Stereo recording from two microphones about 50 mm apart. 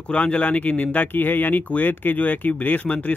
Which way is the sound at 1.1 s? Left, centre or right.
Left.